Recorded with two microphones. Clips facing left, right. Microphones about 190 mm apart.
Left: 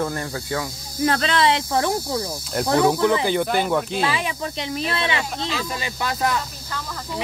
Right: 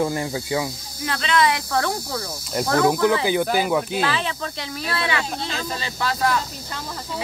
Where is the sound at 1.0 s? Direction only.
40° left (ahead or behind); by 2.2 s 20° left (ahead or behind).